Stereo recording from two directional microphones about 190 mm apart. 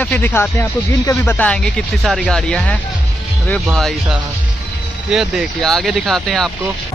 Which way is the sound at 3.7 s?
Centre (ahead or behind).